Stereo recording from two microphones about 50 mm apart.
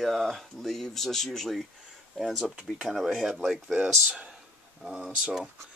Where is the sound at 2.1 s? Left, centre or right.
Centre.